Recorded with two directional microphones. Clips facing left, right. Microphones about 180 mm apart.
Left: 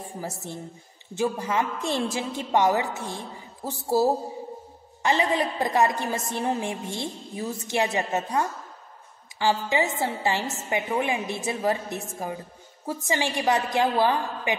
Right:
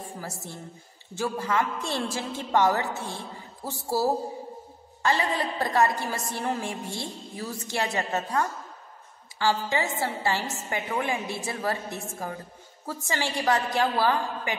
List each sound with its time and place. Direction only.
0.2 s a woman's voice: 15° left (ahead or behind)